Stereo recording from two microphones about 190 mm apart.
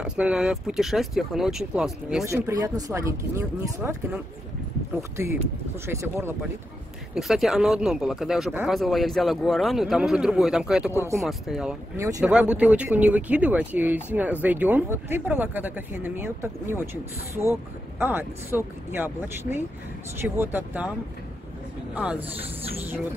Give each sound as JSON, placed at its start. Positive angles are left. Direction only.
{"t": 0.0, "sound": "speech", "side_deg": -5}
{"t": 2.2, "sound": "speech", "side_deg": -15}
{"t": 5.9, "sound": "speech", "side_deg": -15}
{"t": 7.2, "sound": "speech", "side_deg": 0}
{"t": 21.9, "sound": "speech", "side_deg": -5}